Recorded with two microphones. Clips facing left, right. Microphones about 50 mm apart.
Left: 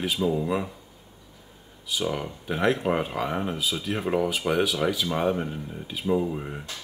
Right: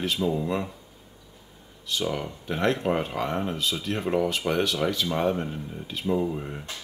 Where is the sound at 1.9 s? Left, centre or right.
Centre.